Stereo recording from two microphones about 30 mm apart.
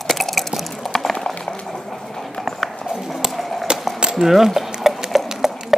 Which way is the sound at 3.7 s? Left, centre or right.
Right.